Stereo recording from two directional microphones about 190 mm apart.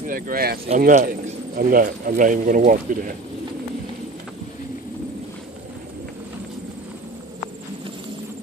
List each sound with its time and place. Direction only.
0.0 s a man's voice: 50° right (ahead or behind)